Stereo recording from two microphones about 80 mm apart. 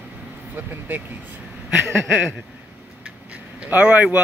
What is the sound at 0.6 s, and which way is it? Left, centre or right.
Speech, right.